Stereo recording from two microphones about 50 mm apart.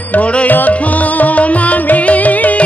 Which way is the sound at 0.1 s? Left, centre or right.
Left.